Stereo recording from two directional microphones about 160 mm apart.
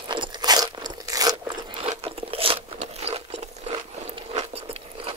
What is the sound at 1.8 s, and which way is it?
Crunch, 35° right (ahead or behind).